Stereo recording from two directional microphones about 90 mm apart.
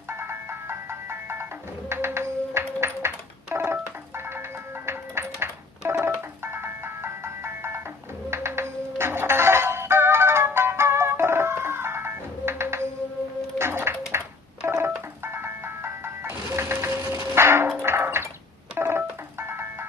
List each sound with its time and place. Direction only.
0.2 s music: 25° right (ahead or behind)
6.0 s ice cream truck: 25° right (ahead or behind)
8.3 s music: 30° right (ahead or behind)
14.6 s telephone dialing: 30° right (ahead or behind)
15.2 s ice cream truck: 25° right (ahead or behind)
18.8 s music: 25° right (ahead or behind)